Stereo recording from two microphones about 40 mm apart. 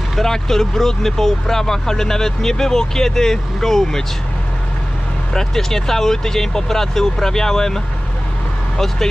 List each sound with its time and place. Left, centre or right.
0.1 s speech: centre
5.3 s speech: centre